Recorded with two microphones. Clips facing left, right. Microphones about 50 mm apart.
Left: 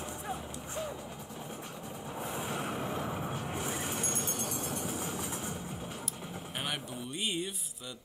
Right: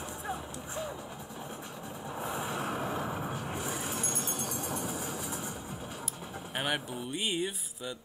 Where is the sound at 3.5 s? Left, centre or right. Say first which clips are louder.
Even; left.